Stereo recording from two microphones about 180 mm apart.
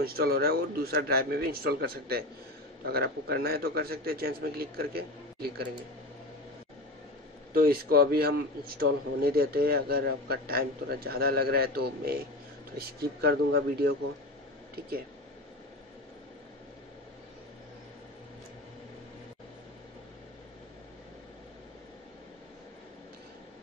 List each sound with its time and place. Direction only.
0.0 s a man's voice: 55° right (ahead or behind)
7.5 s a man's voice: 55° right (ahead or behind)